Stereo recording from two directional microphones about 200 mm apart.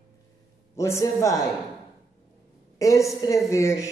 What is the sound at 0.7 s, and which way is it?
Speech, 15° left (ahead or behind).